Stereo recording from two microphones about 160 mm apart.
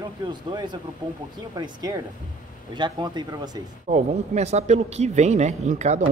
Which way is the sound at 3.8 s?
45° right (ahead or behind).